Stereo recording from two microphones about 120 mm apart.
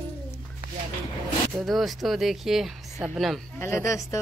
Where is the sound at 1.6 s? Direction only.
Centre (ahead or behind).